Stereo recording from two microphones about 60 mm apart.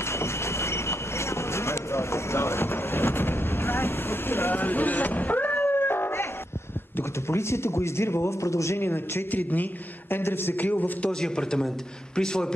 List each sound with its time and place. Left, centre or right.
0.0 s train: left
7.0 s speech: left
8.7 s speech: left
9.3 s a man's voice: left
11.1 s a man's voice: centre